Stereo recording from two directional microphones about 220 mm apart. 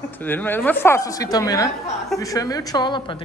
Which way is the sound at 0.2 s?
10° left (ahead or behind).